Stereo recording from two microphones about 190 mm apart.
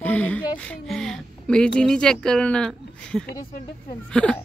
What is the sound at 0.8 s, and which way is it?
A woman's voice, centre (ahead or behind).